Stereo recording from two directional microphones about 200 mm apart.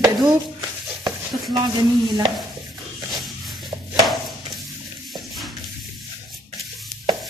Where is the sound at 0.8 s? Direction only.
20° right (ahead or behind).